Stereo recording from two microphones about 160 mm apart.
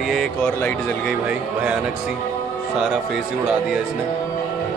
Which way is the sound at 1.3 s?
5° right (ahead or behind).